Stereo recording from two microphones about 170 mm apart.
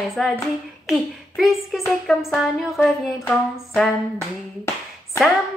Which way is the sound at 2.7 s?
15° left (ahead or behind).